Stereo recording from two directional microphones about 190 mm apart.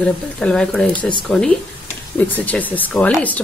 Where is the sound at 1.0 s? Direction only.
25° left (ahead or behind).